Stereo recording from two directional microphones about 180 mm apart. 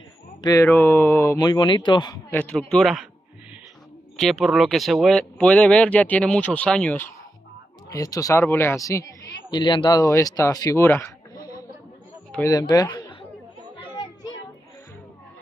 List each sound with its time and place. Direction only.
0.4 s speech: 20° left (ahead or behind)
0.7 s speech: 10° left (ahead or behind)
2.3 s speech: 5° left (ahead or behind)
4.2 s speech: centre (ahead or behind)
7.9 s speech: 20° left (ahead or behind)
12.3 s speech: 15° left (ahead or behind)
13.7 s children playing: 25° left (ahead or behind)